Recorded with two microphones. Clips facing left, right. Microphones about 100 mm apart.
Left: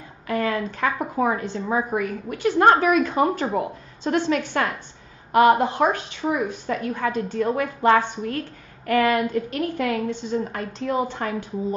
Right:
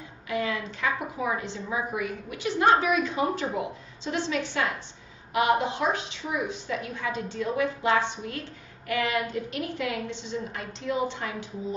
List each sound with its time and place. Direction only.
0.3 s a woman's voice: 50° left (ahead or behind)